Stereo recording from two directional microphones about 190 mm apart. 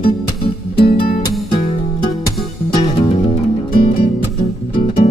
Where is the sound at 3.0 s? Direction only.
30° left (ahead or behind).